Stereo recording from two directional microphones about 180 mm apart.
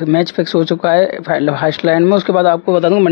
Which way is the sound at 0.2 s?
20° left (ahead or behind).